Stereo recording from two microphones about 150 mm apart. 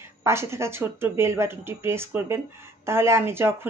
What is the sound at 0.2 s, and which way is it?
A woman's voice, 15° right (ahead or behind).